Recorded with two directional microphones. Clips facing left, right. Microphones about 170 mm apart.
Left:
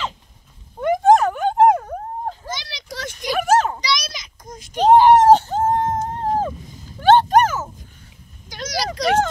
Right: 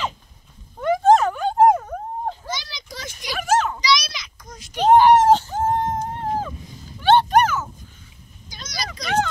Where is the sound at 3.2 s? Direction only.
50° left (ahead or behind); by 5.1 s 35° left (ahead or behind).